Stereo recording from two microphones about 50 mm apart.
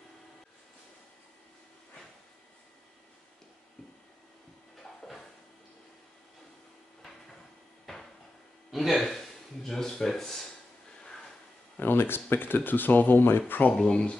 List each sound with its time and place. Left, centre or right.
7.8 s cupboard open or close: centre
8.7 s speech: centre
11.8 s speech: left
13.6 s speech: left
13.8 s speech: centre